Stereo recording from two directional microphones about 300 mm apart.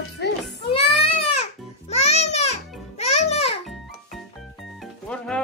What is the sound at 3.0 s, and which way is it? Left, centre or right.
Music, left.